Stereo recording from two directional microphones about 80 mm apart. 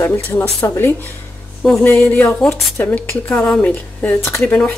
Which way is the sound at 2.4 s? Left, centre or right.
Centre.